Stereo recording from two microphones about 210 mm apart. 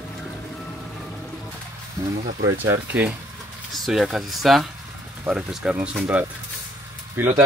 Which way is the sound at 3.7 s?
Centre (ahead or behind).